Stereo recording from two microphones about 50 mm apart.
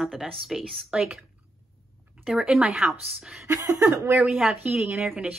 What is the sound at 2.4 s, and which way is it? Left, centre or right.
Speech, centre.